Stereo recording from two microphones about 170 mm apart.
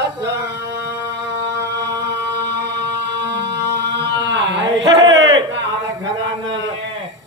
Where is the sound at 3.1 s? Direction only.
90° right.